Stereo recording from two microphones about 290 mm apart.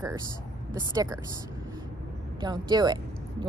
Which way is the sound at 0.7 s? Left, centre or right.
Centre.